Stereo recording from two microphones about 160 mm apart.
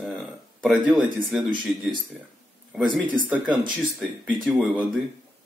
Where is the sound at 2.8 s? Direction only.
30° right (ahead or behind).